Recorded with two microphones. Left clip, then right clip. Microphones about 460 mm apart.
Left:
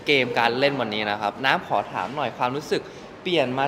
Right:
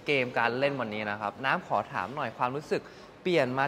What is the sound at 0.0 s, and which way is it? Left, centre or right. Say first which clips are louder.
A man's voice: left 7 dB; right.